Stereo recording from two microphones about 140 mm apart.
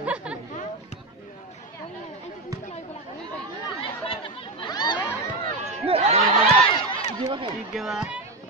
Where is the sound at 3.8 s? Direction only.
40° left (ahead or behind).